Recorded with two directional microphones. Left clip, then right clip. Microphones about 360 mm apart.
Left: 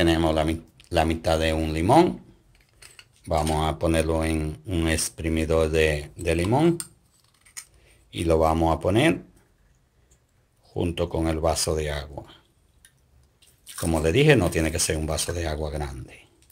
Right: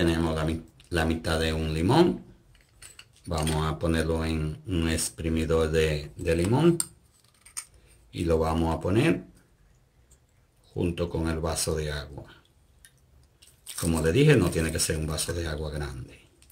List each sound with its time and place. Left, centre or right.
0.0 s speech: left
3.3 s speech: centre
8.2 s speech: left
10.8 s speech: left
14.0 s speech: left